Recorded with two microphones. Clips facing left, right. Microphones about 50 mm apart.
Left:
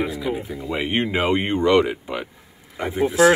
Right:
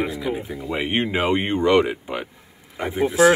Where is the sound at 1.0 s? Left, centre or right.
Centre.